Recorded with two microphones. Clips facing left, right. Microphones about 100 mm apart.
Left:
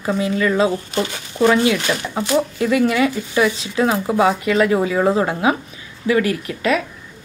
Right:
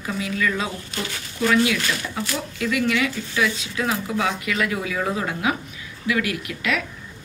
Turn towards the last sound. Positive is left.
turn(degrees=35)  # may be behind; listen again after turning